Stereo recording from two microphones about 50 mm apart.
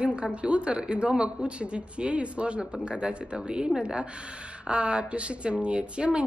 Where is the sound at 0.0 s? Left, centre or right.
Right.